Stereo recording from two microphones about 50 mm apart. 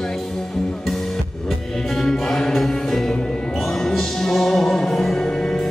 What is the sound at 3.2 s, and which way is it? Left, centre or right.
Music, centre.